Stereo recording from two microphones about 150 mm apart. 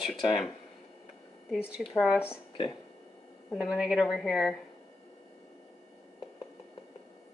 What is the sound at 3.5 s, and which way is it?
A woman's voice, 5° right (ahead or behind).